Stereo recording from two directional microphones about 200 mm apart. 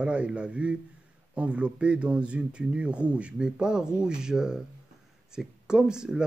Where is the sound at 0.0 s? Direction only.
5° right (ahead or behind).